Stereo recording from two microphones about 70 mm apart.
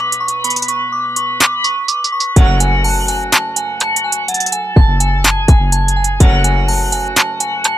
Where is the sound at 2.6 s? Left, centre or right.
Left.